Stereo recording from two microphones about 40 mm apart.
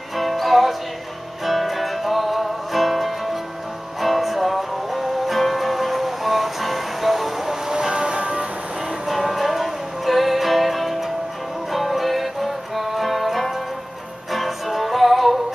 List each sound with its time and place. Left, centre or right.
0.1 s music: centre
7.7 s a sound: right
9.0 s music: centre